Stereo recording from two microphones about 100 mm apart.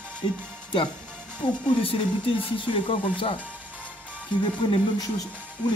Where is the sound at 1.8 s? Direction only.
65° left (ahead or behind).